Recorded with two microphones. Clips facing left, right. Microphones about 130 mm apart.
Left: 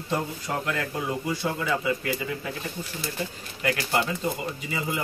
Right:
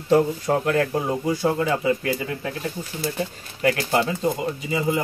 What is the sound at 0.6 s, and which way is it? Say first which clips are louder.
Speech: right 8 dB; 40° right (ahead or behind).